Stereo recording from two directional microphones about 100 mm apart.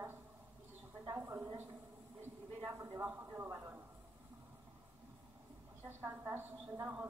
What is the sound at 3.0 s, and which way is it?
Speech, 25° right (ahead or behind).